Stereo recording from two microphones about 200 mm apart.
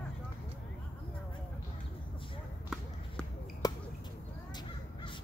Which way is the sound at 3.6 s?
20° left (ahead or behind).